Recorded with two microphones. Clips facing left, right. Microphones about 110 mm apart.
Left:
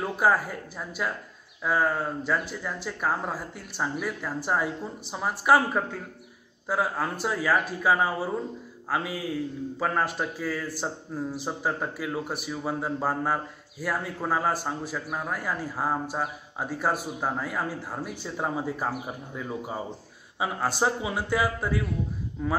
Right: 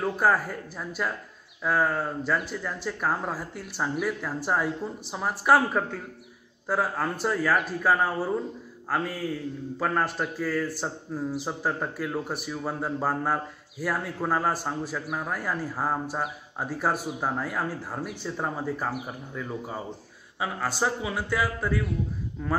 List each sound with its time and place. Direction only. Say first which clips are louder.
0.0 s a man's voice: even; 5° left (ahead or behind)